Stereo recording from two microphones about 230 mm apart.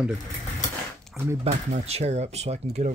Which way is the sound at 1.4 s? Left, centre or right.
Right.